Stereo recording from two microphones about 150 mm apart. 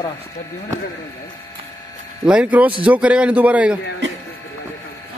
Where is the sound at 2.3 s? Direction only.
10° right (ahead or behind).